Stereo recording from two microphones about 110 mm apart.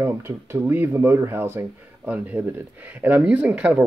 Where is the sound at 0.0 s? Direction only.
20° right (ahead or behind).